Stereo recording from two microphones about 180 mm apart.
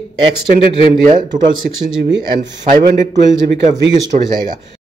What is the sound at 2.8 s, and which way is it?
A man's voice, 45° right (ahead or behind).